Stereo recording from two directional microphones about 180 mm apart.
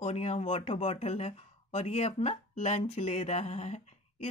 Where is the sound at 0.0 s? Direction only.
35° left (ahead or behind).